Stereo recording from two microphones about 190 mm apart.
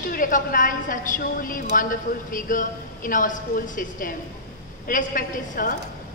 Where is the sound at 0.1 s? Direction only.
45° left (ahead or behind).